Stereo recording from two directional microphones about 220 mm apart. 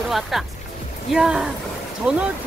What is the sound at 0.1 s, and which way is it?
Speech, centre (ahead or behind).